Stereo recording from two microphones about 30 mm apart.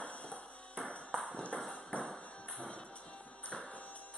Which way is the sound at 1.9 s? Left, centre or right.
Left.